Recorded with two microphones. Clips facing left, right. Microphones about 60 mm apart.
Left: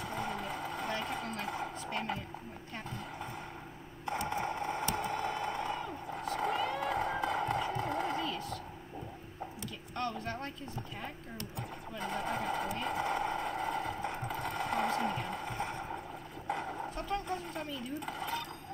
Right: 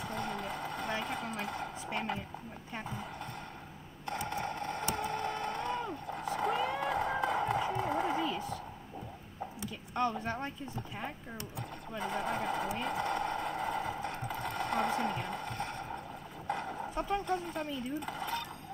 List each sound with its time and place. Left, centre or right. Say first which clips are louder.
0.0 s vehicle: even; centre
1.9 s a sound: right 2 dB; centre
4.3 s a sound: left 1 dB; centre
6.3 s run: right 1 dB; centre
9.9 s speech: right 4 dB; centre
12.0 s sewing machine: right 1 dB; centre
15.5 s boat: left 1 dB; centre
16.4 s a sound: even; centre
16.9 s speech: right 6 dB; centre